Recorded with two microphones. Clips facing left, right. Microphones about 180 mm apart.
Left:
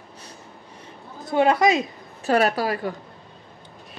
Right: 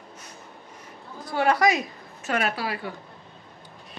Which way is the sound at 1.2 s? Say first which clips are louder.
Left 3 dB; 20° left (ahead or behind).